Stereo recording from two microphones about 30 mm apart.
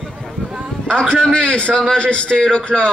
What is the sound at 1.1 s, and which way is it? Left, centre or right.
Speech, left.